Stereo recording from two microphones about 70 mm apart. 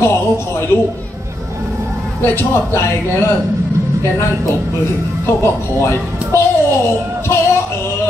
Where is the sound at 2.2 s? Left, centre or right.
Left.